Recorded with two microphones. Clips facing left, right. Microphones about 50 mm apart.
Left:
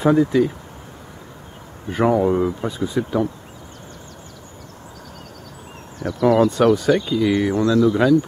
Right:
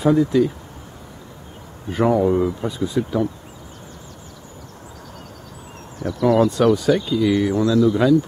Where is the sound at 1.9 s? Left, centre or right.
Centre.